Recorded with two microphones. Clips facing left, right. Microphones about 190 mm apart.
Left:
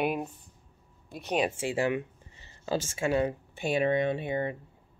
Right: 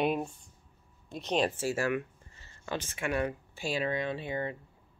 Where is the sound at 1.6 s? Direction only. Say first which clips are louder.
Left 2 dB; 20° left (ahead or behind).